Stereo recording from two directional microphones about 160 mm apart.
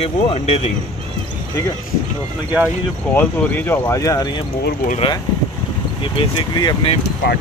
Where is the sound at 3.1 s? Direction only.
15° left (ahead or behind).